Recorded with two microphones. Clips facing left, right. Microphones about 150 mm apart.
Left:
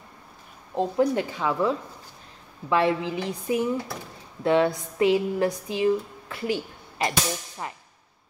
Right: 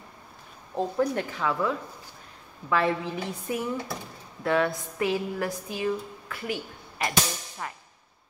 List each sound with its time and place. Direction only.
0.7 s a woman's voice: 15° left (ahead or behind)